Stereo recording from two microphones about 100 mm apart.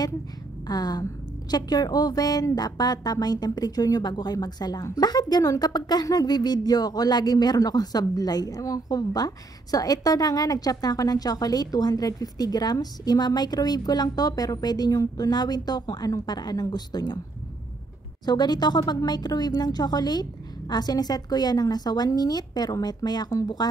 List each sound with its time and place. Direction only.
0.7 s a woman's voice: 40° left (ahead or behind)
18.2 s speech: 45° left (ahead or behind)